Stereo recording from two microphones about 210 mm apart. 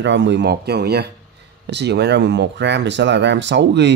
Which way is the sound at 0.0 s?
60° right (ahead or behind).